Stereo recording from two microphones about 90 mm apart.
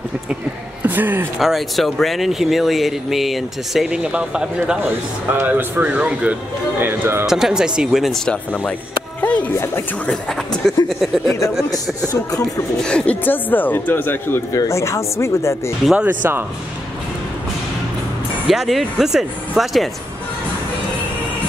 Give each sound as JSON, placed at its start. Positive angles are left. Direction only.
{"t": 0.8, "sound": "speech", "side_deg": -20}
{"t": 1.4, "sound": "speech", "side_deg": 0}
{"t": 5.3, "sound": "speech", "side_deg": -25}
{"t": 6.8, "sound": "speech", "side_deg": -25}
{"t": 7.2, "sound": "speech", "side_deg": -5}
{"t": 8.3, "sound": "speech", "side_deg": 15}
{"t": 9.2, "sound": "music", "side_deg": 15}
{"t": 10.0, "sound": "speech", "side_deg": 10}
{"t": 12.8, "sound": "speech", "side_deg": 15}
{"t": 14.5, "sound": "speech", "side_deg": 35}
{"t": 16.0, "sound": "speech", "side_deg": -20}
{"t": 18.5, "sound": "speech", "side_deg": 0}